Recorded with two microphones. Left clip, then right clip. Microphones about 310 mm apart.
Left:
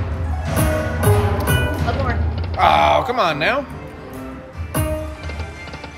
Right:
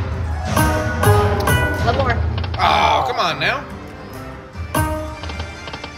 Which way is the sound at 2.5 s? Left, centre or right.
Left.